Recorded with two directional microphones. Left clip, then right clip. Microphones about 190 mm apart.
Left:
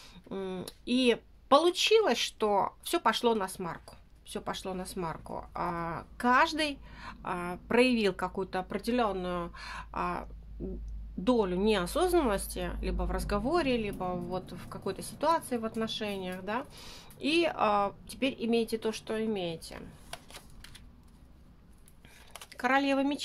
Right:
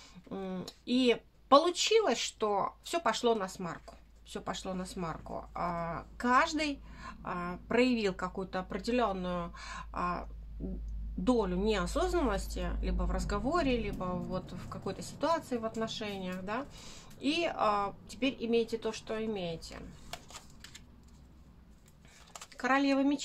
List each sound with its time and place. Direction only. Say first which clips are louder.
0.0 s speech: left 3 dB; 35° left (ahead or behind)
11.2 s speech: left 3 dB; 35° left (ahead or behind)
20.1 s shuffling cards: right 1 dB; 5° left (ahead or behind)
22.5 s speech: left 2 dB; 40° left (ahead or behind)